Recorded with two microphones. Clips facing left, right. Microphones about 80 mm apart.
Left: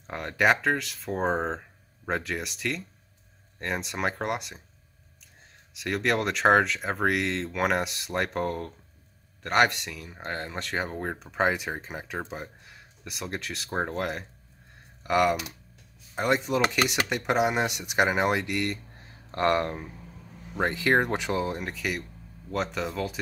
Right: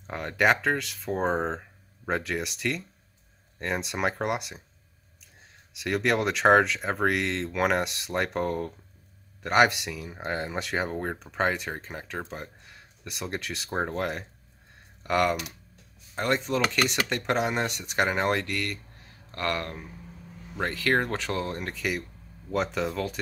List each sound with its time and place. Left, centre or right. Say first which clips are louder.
0.0 s speech: even; centre
5.7 s speech: right 1 dB; centre